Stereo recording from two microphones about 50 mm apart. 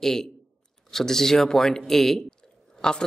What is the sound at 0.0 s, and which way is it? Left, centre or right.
Speech, centre.